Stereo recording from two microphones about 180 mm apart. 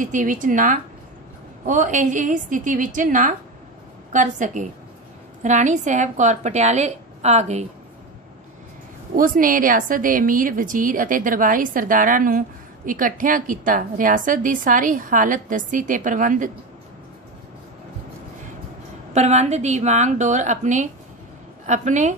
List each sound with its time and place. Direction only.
0.0 s a woman's voice: 45° right (ahead or behind)
9.1 s a woman's voice: 50° right (ahead or behind)
19.1 s a woman's voice: 40° right (ahead or behind)